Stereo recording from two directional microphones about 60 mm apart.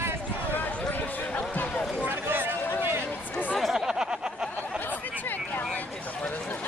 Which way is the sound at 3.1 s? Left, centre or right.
Left.